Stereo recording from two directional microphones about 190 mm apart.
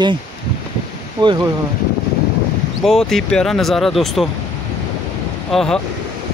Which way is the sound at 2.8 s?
Centre (ahead or behind).